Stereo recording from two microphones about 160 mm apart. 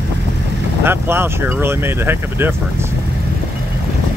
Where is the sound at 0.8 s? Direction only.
15° right (ahead or behind).